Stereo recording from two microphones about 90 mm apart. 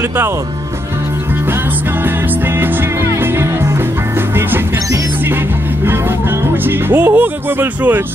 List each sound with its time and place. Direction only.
6.6 s music: 25° right (ahead or behind)